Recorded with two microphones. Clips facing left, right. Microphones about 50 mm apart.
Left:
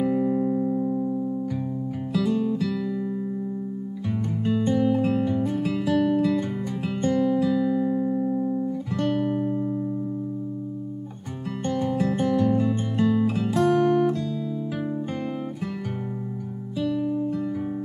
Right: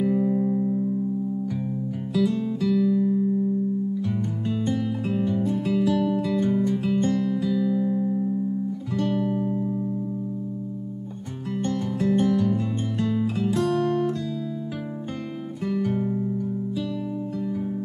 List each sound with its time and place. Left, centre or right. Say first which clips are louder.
0.0 s music: even; centre
2.1 s music: even; centre
4.5 s music: left 5 dB; centre
5.3 s music: even; left
6.6 s music: right 4 dB; centre
12.1 s music: right 3 dB; centre